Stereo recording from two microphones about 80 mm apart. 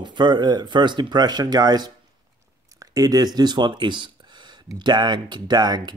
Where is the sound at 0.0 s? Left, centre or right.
Right.